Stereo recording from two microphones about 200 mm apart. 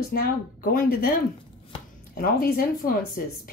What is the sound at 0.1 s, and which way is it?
Speech, 50° left (ahead or behind).